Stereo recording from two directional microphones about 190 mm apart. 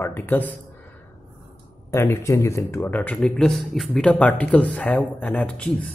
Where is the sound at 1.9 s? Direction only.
15° left (ahead or behind).